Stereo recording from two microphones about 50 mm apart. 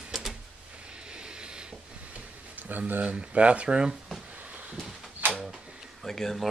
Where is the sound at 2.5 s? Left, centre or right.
Right; by 3.9 s centre.